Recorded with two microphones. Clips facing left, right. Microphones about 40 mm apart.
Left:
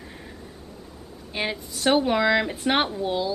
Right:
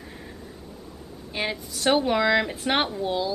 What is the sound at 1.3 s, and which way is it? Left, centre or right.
A woman's voice, centre.